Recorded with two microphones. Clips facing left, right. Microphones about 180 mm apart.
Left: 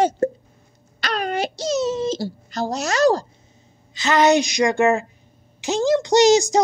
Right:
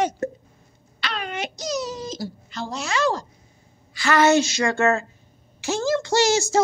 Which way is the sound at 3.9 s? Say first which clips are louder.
Left 1 dB; 20° left (ahead or behind).